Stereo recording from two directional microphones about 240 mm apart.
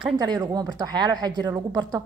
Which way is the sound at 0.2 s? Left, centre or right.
Centre.